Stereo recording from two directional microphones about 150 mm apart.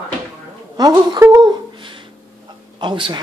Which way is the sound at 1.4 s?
35° right (ahead or behind).